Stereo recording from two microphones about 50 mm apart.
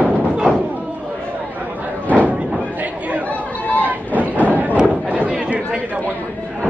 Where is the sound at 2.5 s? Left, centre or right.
Right.